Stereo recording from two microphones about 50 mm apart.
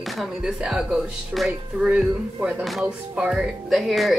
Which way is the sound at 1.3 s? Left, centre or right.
Centre.